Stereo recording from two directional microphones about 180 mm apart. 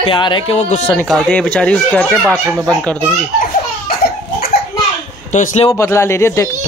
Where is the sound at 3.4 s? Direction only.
55° left (ahead or behind).